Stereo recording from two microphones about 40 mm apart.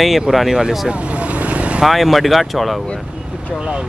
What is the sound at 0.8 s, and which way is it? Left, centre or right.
Vehicle, right.